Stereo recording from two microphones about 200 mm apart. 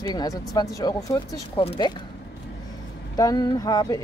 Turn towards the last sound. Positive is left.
turn(degrees=20)  # may be behind; listen again after turning